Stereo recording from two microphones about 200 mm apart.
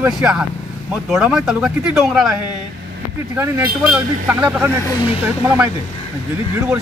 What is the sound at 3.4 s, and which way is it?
Speech, 10° right (ahead or behind).